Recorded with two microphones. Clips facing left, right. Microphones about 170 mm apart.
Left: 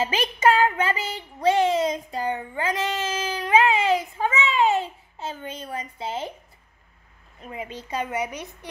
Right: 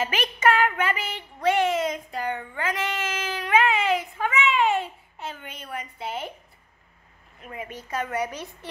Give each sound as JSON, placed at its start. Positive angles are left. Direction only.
{"t": 0.0, "sound": "speech", "side_deg": 30}
{"t": 0.5, "sound": "child singing", "side_deg": 30}
{"t": 7.4, "sound": "a woman's voice", "side_deg": 25}